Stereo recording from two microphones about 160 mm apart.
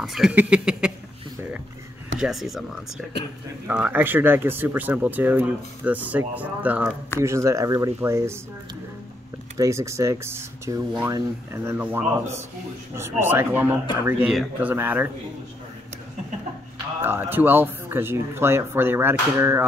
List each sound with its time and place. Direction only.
0.0 s speech: 5° right (ahead or behind)
2.1 s speech: 5° right (ahead or behind)
9.6 s speech: 20° right (ahead or behind)
17.0 s speech: 15° right (ahead or behind)